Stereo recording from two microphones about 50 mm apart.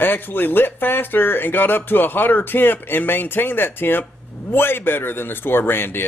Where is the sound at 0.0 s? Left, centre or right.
Left.